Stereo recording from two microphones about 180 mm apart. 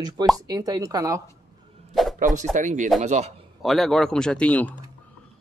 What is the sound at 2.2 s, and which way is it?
A man's voice, 45° right (ahead or behind).